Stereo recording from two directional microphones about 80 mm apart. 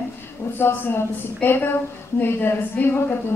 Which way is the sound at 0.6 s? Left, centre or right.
Left.